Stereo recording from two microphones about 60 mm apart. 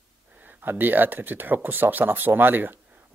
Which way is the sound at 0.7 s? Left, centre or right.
Right.